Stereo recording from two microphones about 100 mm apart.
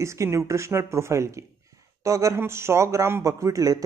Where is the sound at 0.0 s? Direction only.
30° right (ahead or behind).